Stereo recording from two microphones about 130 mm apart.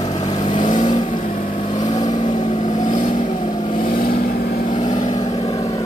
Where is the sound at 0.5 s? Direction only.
70° left (ahead or behind); by 1.6 s 90° left.